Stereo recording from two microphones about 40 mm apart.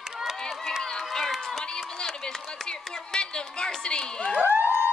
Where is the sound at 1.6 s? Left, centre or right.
Left.